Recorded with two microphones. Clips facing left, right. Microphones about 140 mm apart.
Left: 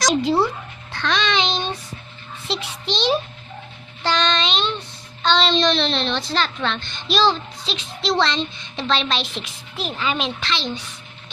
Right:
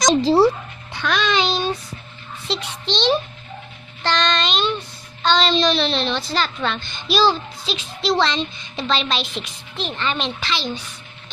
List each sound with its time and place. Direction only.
0.1 s speech: 35° right (ahead or behind)
0.9 s child singing: 5° right (ahead or behind)
2.4 s a child's voice: 5° left (ahead or behind)
4.0 s child singing: 5° left (ahead or behind)
5.2 s a child's voice: centre (ahead or behind)